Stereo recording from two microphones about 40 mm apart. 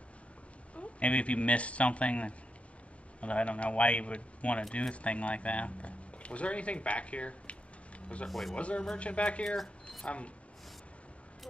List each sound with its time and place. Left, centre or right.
0.7 s speech: left
8.3 s speech: centre
8.5 s speech: left